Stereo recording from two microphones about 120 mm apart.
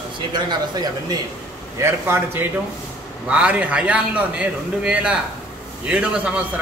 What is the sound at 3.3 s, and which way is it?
A man's voice, 10° right (ahead or behind).